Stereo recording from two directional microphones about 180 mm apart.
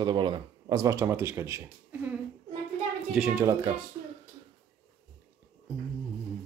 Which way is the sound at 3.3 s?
15° right (ahead or behind).